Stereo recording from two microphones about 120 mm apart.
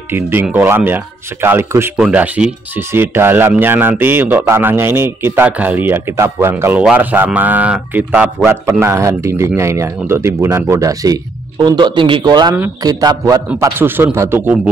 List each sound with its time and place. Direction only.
0.1 s speech: 20° right (ahead or behind)
13.6 s speech: 20° right (ahead or behind)